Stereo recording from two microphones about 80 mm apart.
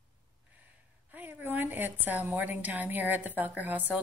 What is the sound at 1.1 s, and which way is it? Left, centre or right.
A woman's voice, right.